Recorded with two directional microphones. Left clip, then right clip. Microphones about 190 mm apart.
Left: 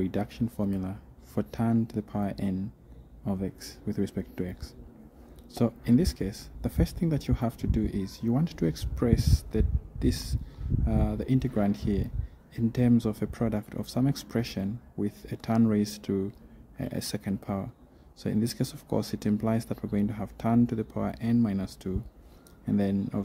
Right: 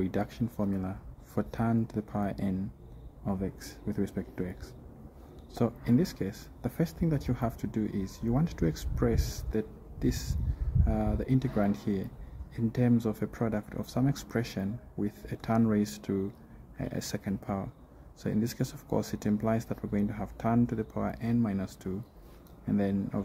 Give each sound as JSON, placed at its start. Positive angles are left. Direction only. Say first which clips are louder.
{"t": 0.0, "sound": "speech", "louder": "left 1 dB", "side_deg": 10}